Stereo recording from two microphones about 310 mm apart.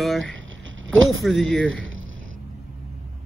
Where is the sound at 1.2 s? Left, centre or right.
Centre.